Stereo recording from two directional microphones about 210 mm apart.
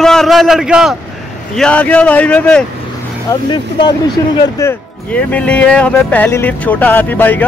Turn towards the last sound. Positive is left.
turn(degrees=10)  # may be behind; listen again after turning